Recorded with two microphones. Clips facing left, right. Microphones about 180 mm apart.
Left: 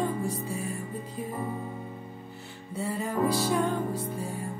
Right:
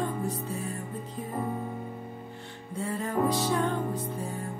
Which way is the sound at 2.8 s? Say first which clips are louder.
Even; 10° left (ahead or behind).